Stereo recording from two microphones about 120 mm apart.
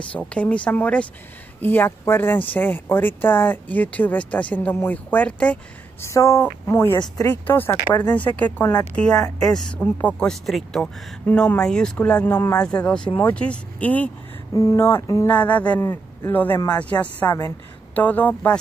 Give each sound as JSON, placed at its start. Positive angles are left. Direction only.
{"t": 0.0, "sound": "speech", "side_deg": 10}
{"t": 6.0, "sound": "speech", "side_deg": 25}
{"t": 9.5, "sound": "speech", "side_deg": 5}
{"t": 14.5, "sound": "speech", "side_deg": 25}
{"t": 15.2, "sound": "speech", "side_deg": 15}